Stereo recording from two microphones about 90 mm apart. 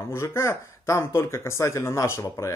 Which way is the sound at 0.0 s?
30° left (ahead or behind).